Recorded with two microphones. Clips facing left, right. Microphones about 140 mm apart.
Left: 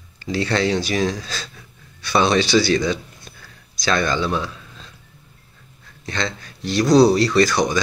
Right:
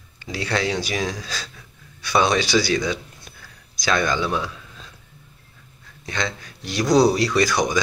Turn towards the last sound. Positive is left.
turn(degrees=-15)  # may be behind; listen again after turning